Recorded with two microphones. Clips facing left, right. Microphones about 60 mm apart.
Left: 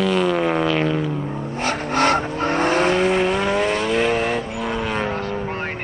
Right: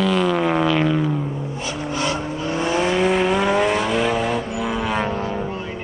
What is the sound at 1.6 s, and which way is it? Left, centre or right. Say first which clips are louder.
Vehicle: left 7 dB; left.